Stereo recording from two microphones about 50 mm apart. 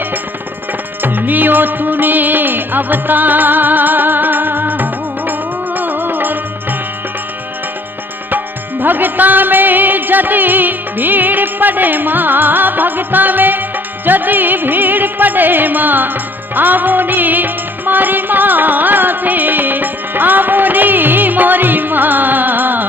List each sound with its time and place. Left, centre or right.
1.0 s music: right
8.3 s music: right